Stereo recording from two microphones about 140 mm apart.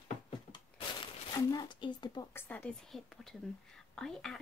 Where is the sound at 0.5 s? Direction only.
30° left (ahead or behind).